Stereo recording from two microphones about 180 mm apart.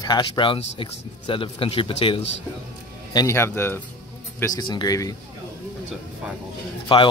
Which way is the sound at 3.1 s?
15° left (ahead or behind).